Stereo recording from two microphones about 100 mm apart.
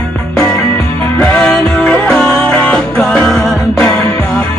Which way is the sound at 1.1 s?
20° left (ahead or behind).